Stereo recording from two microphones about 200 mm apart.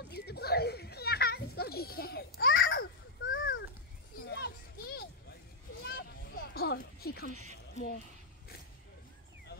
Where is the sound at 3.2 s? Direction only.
75° left (ahead or behind).